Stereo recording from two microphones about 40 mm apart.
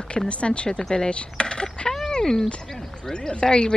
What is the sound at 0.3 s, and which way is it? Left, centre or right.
Speech, left.